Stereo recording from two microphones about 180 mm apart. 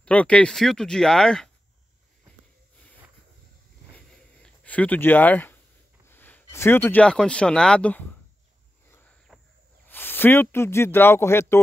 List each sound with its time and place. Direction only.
0.0 s speech: 5° left (ahead or behind)
3.9 s a sound: 10° left (ahead or behind)
6.0 s speech: 10° left (ahead or behind)
9.3 s cricket: centre (ahead or behind)
9.8 s speech: 10° left (ahead or behind)